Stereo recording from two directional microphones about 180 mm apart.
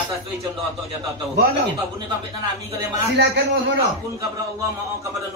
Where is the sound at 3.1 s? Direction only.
65° right (ahead or behind).